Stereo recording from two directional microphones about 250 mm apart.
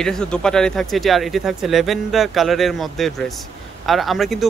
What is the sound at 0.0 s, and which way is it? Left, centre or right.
Speech, centre.